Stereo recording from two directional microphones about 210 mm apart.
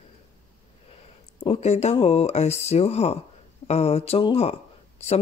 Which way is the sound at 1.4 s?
30° left (ahead or behind).